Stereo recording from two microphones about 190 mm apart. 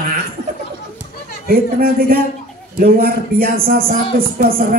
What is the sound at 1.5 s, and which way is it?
Speech, 50° right (ahead or behind).